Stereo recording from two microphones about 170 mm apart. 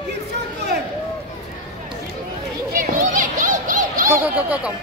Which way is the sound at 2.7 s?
55° right (ahead or behind).